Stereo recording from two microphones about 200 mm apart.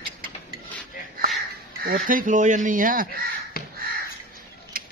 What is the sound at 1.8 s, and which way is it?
Speech, 45° right (ahead or behind).